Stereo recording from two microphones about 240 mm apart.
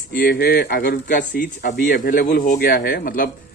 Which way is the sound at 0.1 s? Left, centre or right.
Left.